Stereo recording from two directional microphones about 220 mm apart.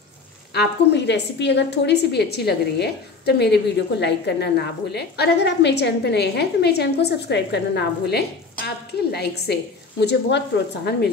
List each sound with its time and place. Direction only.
0.5 s a woman's voice: 50° left (ahead or behind)